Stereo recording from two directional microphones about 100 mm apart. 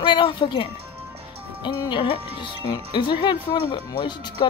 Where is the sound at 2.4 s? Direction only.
50° left (ahead or behind).